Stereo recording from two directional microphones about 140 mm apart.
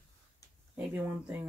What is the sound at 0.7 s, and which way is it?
Speech, 10° right (ahead or behind).